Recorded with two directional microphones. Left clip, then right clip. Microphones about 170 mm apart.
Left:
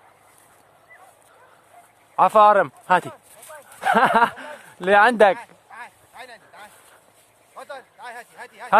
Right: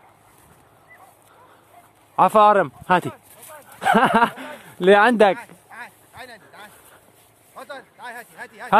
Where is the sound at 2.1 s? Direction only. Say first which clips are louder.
Even; 10° right (ahead or behind).